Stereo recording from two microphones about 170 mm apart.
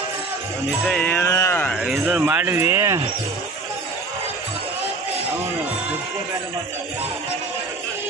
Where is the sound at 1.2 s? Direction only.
20° left (ahead or behind).